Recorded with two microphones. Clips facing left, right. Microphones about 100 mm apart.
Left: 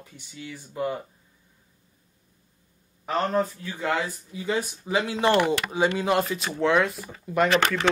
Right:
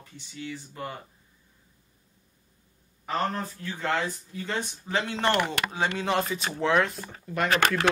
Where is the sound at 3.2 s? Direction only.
15° left (ahead or behind).